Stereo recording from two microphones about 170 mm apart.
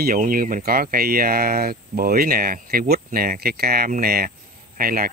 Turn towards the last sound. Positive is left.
turn(degrees=-55)  # may be behind; listen again after turning